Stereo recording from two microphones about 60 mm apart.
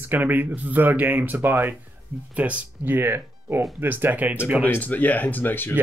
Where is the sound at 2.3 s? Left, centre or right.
Right.